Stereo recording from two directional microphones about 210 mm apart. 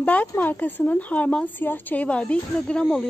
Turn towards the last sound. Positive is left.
turn(degrees=5)  # may be behind; listen again after turning